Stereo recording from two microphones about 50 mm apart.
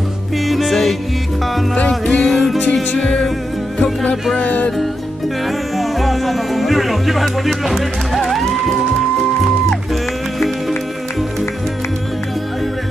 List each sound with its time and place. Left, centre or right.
0.5 s music: centre
1.9 s music: centre
2.3 s music: centre
3.0 s music: centre; by 4.7 s left
5.8 s speech: centre